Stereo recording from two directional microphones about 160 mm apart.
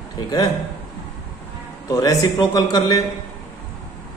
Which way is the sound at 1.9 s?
20° left (ahead or behind).